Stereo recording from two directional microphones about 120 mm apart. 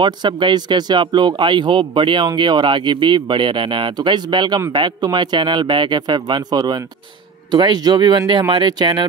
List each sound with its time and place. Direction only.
0.0 s speech: 40° right (ahead or behind)